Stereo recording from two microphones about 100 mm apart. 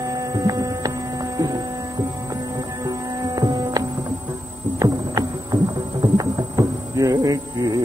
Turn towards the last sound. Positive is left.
turn(degrees=-35)  # may be behind; listen again after turning